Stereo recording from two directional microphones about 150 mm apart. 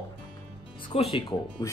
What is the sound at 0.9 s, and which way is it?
Speech, 40° left (ahead or behind).